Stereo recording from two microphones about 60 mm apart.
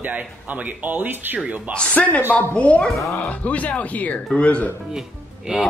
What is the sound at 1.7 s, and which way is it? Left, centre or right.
Speech, left.